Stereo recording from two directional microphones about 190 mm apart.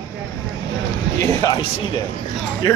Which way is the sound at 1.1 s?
15° left (ahead or behind).